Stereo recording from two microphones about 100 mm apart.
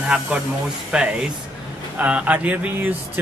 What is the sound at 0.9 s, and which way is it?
Speech, 5° right (ahead or behind).